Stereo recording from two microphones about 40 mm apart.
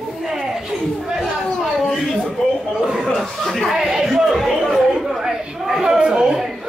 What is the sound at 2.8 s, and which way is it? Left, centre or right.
Chuckle, centre.